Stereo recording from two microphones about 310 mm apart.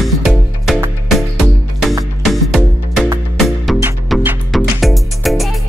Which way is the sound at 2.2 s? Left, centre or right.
Centre.